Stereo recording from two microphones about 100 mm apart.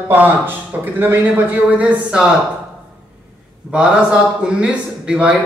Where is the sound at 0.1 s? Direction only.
20° right (ahead or behind).